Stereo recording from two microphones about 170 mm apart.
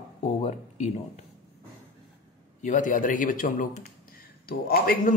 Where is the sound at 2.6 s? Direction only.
50° left (ahead or behind).